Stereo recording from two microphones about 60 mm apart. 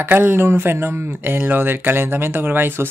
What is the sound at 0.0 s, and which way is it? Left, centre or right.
Speech, right.